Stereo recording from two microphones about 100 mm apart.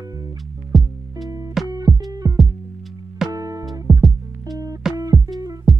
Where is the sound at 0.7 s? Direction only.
Centre (ahead or behind).